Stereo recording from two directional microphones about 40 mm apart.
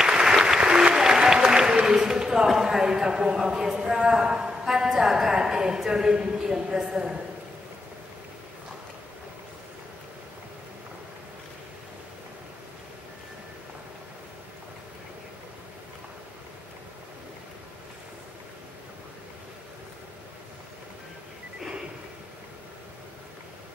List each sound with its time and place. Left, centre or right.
0.0 s applause: centre
2.4 s a sound: centre
4.9 s a woman's voice: centre